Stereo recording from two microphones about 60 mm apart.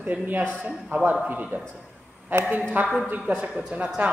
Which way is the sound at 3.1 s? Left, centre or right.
Centre.